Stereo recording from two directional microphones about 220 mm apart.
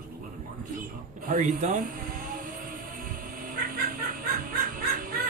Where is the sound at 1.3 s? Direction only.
35° right (ahead or behind).